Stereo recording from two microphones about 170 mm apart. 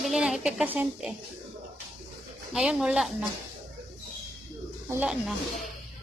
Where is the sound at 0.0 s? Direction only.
Centre (ahead or behind).